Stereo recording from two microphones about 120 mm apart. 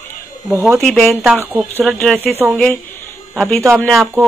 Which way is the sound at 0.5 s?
15° right (ahead or behind).